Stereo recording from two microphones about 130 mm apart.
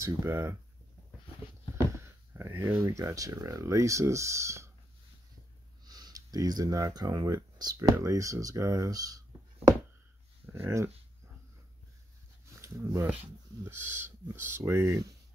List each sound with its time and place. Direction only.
0.0 s speech: 20° right (ahead or behind)
2.0 s speech: 20° right (ahead or behind)
5.9 s speech: 30° right (ahead or behind)
10.5 s speech: 20° right (ahead or behind)
12.6 s speech: 25° right (ahead or behind)